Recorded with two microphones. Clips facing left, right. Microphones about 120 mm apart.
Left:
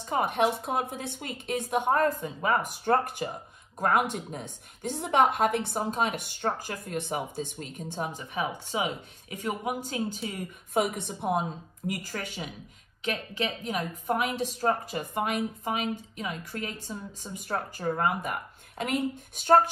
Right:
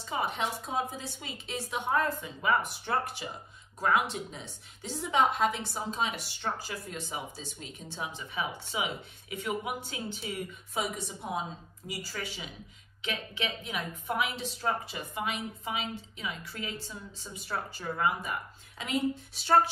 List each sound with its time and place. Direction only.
0.0 s a woman's voice: 50° left (ahead or behind)